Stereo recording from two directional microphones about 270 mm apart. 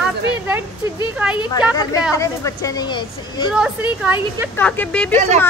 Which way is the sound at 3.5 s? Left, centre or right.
Centre.